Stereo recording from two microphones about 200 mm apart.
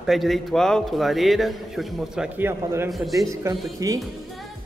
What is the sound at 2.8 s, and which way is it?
Speech, centre (ahead or behind).